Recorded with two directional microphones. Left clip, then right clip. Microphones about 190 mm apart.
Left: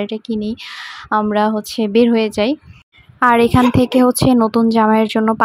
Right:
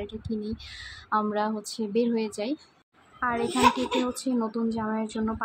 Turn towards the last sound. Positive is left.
turn(degrees=50)  # may be behind; listen again after turning